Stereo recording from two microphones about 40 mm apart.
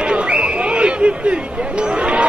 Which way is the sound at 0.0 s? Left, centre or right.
Right.